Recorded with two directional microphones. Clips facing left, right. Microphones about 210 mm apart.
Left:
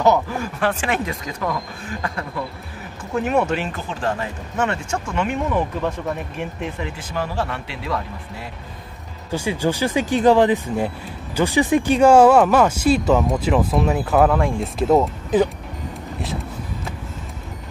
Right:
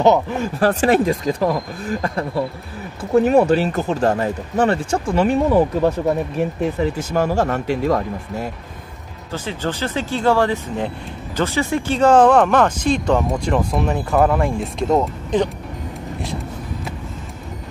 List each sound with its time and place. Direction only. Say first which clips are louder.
0.0 s speech: right 3 dB; 25° right (ahead or behind)
0.6 s speech: right 8 dB; 35° right (ahead or behind)
9.3 s speech: left 3 dB; 10° left (ahead or behind)